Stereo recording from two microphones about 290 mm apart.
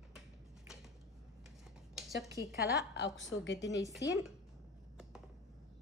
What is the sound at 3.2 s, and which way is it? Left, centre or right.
Speech, left.